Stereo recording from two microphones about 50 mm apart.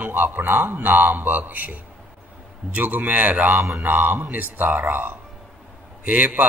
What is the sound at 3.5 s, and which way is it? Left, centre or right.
Mantra, right.